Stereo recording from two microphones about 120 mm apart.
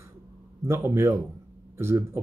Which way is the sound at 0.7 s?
20° right (ahead or behind).